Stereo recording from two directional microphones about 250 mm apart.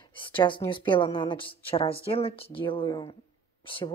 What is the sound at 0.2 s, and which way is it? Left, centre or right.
A woman's voice, centre.